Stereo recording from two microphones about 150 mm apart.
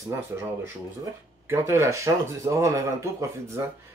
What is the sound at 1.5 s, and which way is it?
Speech, 20° right (ahead or behind).